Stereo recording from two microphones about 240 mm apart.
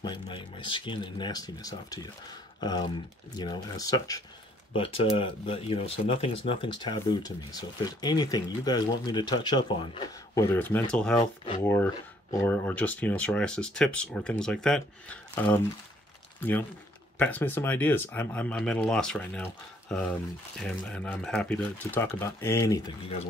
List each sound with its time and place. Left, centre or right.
0.0 s speech: centre
10.3 s speech: centre